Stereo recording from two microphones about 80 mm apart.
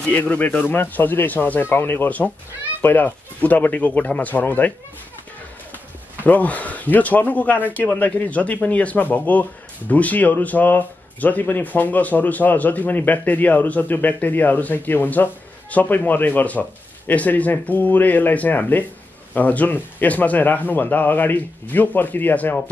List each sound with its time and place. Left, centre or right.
0.1 s speech: left
6.2 s speech: centre